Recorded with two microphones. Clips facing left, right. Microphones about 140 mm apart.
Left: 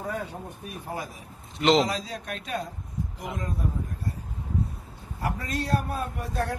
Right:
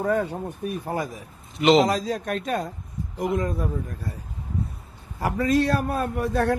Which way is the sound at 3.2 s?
80° right.